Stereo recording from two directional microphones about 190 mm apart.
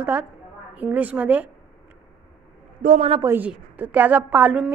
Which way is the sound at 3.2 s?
10° right (ahead or behind).